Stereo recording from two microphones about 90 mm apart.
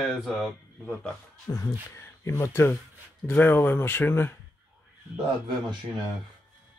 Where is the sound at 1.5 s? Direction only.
40° left (ahead or behind).